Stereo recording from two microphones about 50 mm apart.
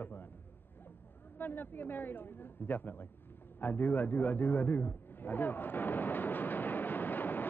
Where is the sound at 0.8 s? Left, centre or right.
Left.